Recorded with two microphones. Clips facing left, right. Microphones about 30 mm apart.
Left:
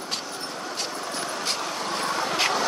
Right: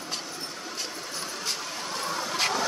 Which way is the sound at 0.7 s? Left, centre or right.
Left.